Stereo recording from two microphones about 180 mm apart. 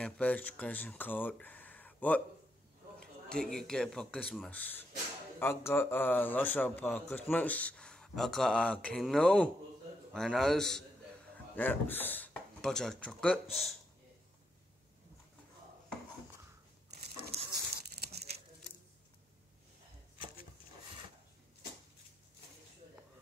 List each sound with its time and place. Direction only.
0.0 s a man's voice: 10° left (ahead or behind)
17.5 s tearing: 60° right (ahead or behind)